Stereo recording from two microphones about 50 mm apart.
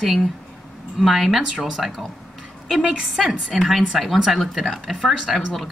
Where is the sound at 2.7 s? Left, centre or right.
Centre.